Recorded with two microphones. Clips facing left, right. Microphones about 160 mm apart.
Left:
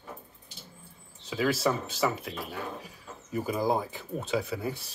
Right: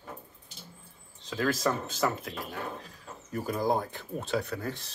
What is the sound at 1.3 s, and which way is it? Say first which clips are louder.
Speech: left 1 dB; 5° left (ahead or behind).